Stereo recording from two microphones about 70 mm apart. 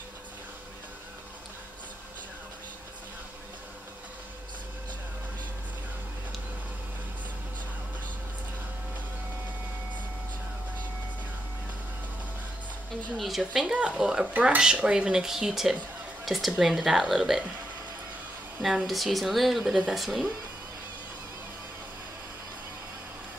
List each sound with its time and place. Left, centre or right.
13.1 s speech: centre
14.3 s speech: right
14.6 s speech: centre
18.9 s speech: centre